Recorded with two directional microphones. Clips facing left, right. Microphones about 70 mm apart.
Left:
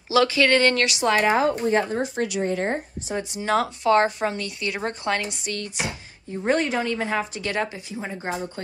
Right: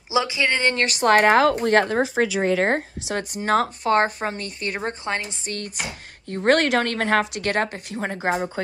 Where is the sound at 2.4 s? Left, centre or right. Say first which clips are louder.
Right 4 dB; right.